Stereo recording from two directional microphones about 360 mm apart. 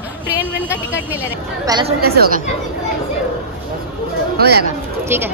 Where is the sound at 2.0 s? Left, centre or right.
Right.